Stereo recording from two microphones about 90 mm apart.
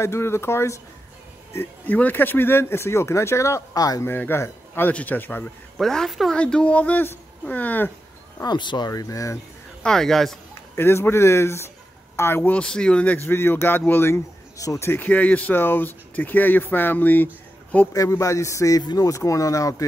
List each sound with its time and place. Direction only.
0.0 s speech: 30° left (ahead or behind)
4.0 s speech: 25° left (ahead or behind)
5.8 s a woman's voice: 5° left (ahead or behind)
6.3 s speech: 10° left (ahead or behind)
8.5 s speech: 55° left (ahead or behind)
8.8 s speech: 40° left (ahead or behind)
9.8 s a woman's voice: 5° left (ahead or behind)
10.8 s speech: 25° left (ahead or behind)
12.5 s speech: 10° left (ahead or behind); by 14.9 s 35° left (ahead or behind)
14.9 s speech: 20° left (ahead or behind)
17.9 s speech: 35° left (ahead or behind)